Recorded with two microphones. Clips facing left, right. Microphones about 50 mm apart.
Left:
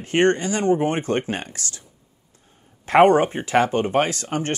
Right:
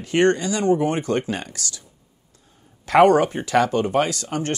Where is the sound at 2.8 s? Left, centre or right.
Left.